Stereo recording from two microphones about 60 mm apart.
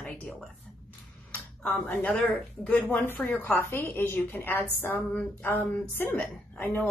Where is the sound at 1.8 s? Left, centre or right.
Left.